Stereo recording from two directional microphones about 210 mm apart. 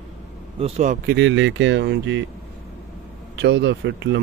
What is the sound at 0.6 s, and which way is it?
Speech, 35° right (ahead or behind).